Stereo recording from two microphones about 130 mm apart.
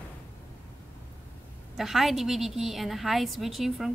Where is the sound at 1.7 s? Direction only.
Centre (ahead or behind).